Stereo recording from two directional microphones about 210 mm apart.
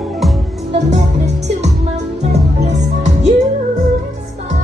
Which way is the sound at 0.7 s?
35° right (ahead or behind).